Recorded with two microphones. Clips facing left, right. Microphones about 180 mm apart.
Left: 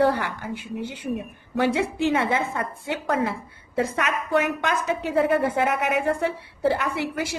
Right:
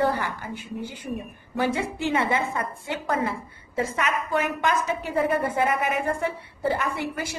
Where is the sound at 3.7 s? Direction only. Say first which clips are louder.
Left 2 dB; 65° left (ahead or behind).